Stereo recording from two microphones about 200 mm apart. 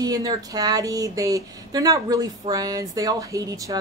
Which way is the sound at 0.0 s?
20° right (ahead or behind).